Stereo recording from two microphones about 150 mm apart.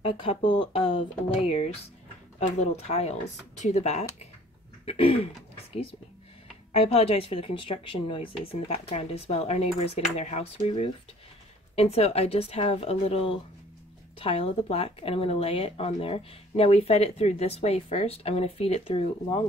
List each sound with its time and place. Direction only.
0.0 s speech: 40° left (ahead or behind)